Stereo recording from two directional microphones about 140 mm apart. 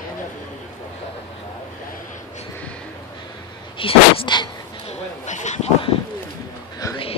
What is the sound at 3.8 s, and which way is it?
Sneeze, 40° left (ahead or behind).